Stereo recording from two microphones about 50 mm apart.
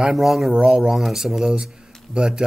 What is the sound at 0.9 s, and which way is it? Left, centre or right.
Speech, centre.